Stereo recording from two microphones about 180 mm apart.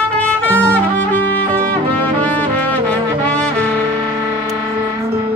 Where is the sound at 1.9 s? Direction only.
10° left (ahead or behind).